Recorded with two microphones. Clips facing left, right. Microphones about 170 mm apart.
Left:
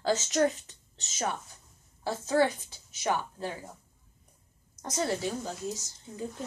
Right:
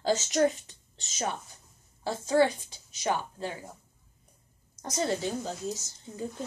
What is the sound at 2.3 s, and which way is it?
A child's voice, 15° right (ahead or behind).